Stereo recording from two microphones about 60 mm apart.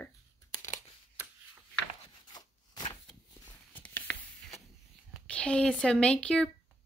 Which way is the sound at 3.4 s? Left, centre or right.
Left.